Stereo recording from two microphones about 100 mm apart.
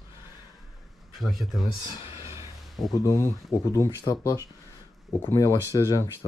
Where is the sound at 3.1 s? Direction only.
25° left (ahead or behind).